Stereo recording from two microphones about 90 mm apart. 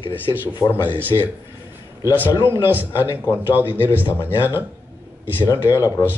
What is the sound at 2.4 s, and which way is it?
A man's voice, 25° right (ahead or behind).